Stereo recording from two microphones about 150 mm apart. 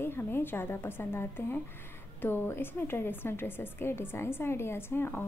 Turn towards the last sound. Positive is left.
turn(degrees=15)  # may be behind; listen again after turning